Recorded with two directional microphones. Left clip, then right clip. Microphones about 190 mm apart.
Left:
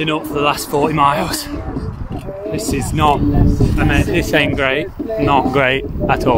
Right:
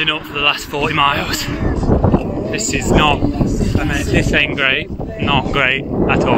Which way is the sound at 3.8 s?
25° right (ahead or behind).